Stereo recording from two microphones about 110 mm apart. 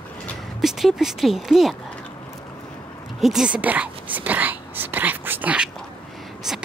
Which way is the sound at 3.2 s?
5° right (ahead or behind).